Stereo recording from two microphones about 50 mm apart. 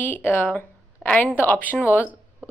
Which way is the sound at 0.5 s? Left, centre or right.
Left.